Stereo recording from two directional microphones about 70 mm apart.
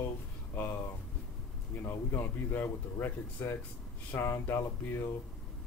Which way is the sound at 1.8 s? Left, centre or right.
Left.